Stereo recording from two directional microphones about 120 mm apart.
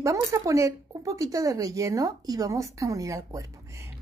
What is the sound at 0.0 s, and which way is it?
Speech, 25° right (ahead or behind).